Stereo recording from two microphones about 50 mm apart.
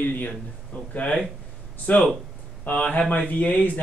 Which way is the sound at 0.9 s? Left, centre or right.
Left.